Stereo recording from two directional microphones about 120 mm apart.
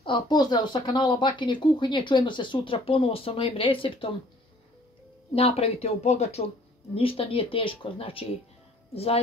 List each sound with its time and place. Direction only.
0.0 s speech: 40° left (ahead or behind)
5.3 s speech: 55° left (ahead or behind)
7.0 s speech: 50° left (ahead or behind)